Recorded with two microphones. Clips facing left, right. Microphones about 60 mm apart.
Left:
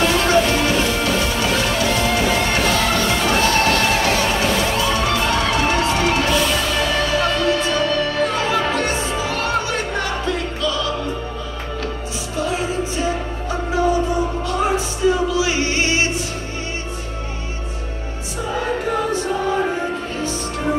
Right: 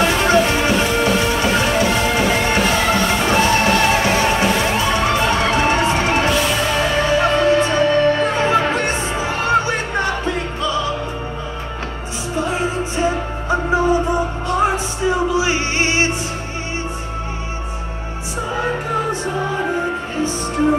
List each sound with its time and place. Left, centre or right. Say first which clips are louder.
0.0 s music: right 1 dB; right
15.0 s music: even; right